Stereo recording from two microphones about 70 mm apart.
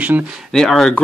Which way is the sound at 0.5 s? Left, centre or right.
Centre.